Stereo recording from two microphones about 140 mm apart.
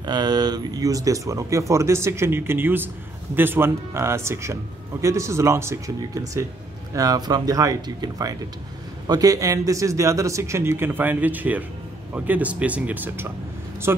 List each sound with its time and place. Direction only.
0.0 s speech: 30° right (ahead or behind)